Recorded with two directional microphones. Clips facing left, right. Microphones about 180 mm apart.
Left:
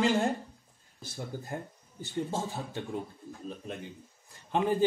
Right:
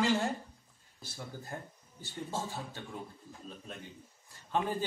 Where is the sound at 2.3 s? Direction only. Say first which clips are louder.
Left 4 dB; 20° left (ahead or behind).